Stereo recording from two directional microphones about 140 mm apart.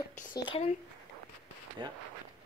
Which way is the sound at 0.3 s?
35° left (ahead or behind).